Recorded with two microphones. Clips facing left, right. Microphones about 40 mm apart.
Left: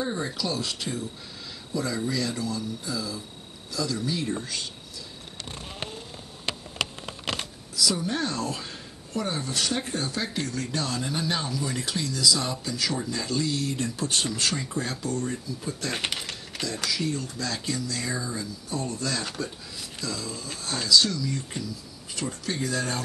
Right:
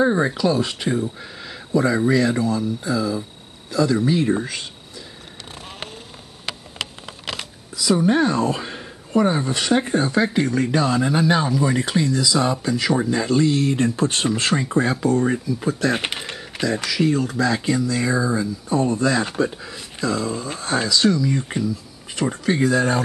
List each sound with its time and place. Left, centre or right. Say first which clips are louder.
0.0 s speech: right 11 dB; right
7.7 s speech: right 9 dB; right
16.6 s speech: right 9 dB; right
16.9 s speech: right 10 dB; right
17.4 s speech: right 11 dB; right